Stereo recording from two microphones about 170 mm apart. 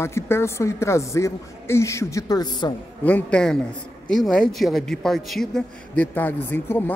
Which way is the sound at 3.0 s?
5° left (ahead or behind).